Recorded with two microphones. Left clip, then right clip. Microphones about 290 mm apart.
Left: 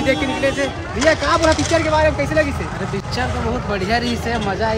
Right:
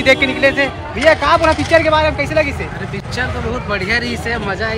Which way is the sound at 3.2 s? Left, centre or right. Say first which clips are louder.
Right 2 dB; centre.